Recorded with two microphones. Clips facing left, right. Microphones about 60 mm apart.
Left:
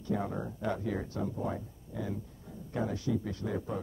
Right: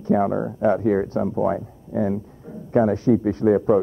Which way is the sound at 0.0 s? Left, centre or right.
Right.